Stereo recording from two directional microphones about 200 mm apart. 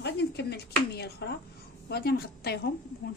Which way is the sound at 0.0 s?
55° left (ahead or behind).